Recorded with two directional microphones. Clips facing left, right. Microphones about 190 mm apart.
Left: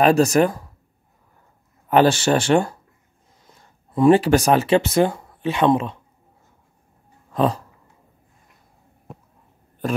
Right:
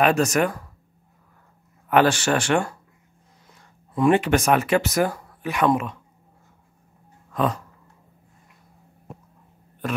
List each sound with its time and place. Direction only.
0.0 s speech: 35° left (ahead or behind)
1.9 s speech: 30° left (ahead or behind)
3.9 s speech: 35° left (ahead or behind)
7.3 s dog: 30° left (ahead or behind)